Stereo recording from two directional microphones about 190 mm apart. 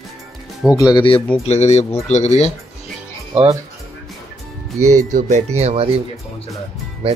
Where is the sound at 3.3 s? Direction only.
30° right (ahead or behind).